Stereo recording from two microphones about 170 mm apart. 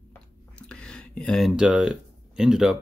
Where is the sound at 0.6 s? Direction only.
5° left (ahead or behind).